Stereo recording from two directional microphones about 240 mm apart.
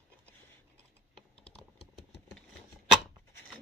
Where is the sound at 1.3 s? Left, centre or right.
Centre.